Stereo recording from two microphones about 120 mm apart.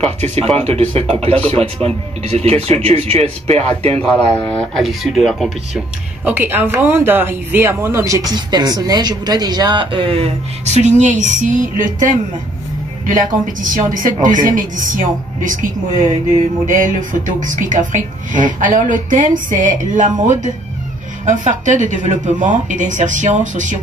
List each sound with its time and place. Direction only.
0.4 s speech: 55° right (ahead or behind)
4.4 s speech: 10° left (ahead or behind)
6.2 s a woman's voice: 15° right (ahead or behind); by 23.8 s 90° right